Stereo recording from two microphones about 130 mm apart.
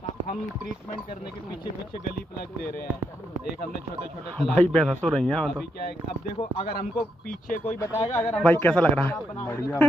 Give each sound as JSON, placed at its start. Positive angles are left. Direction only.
{"t": 4.4, "sound": "a man's voice", "side_deg": 5}
{"t": 7.2, "sound": "speech", "side_deg": 90}
{"t": 7.8, "sound": "a man's voice", "side_deg": 20}